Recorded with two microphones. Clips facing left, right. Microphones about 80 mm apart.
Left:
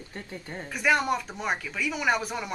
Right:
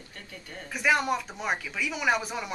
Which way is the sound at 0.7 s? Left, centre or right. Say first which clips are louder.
Left 1 dB; centre.